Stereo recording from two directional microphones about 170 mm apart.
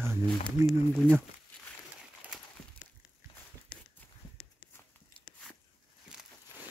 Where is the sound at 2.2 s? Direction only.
5° right (ahead or behind).